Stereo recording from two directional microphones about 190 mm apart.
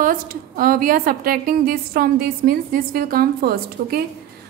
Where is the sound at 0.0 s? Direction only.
50° right (ahead or behind).